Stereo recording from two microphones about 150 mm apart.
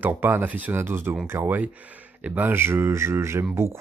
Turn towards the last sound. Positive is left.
turn(degrees=-15)  # may be behind; listen again after turning